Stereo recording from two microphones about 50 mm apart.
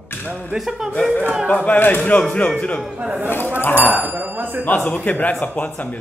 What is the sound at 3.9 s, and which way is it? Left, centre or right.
Speech, right.